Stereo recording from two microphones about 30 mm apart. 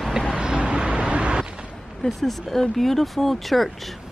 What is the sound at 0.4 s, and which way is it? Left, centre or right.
Vehicle, right.